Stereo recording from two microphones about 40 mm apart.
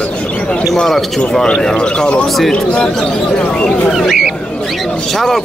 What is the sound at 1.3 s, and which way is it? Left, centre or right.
A man's voice, centre.